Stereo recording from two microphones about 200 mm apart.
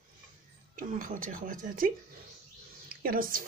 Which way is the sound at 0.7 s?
40° right (ahead or behind).